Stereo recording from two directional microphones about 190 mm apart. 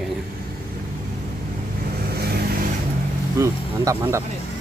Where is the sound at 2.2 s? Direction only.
55° right (ahead or behind).